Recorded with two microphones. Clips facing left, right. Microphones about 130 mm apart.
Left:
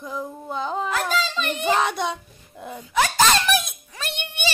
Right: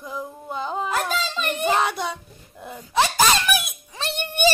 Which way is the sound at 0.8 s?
45° right (ahead or behind).